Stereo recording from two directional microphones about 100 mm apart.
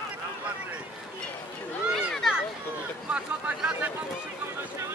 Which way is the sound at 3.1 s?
10° right (ahead or behind).